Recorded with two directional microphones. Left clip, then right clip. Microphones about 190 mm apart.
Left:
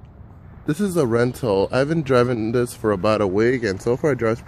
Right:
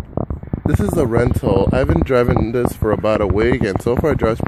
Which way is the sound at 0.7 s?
Centre (ahead or behind).